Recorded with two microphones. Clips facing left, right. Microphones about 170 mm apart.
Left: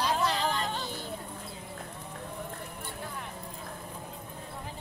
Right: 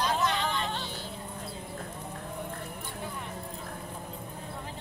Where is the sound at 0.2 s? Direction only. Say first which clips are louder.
Even; 35° left (ahead or behind).